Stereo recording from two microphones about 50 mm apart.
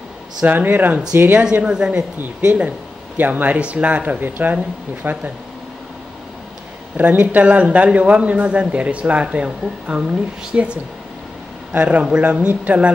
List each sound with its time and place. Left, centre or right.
0.5 s speech: right
1.4 s a woman's voice: centre; by 5.2 s right
7.0 s a man's voice: right